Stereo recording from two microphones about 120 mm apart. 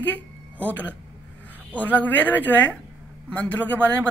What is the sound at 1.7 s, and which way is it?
A woman's voice, 15° left (ahead or behind).